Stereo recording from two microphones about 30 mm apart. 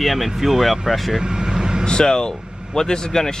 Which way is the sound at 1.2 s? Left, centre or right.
Right.